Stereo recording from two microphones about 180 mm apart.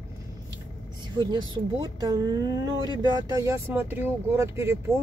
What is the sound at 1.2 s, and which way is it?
Speech, 25° right (ahead or behind).